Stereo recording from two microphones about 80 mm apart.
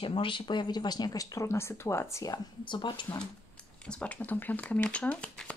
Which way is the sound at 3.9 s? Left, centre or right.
Centre.